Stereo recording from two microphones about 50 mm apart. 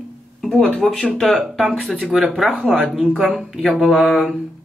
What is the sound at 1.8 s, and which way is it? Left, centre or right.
Speech, right.